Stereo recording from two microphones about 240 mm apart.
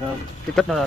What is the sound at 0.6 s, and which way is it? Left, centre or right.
Cutlery, centre.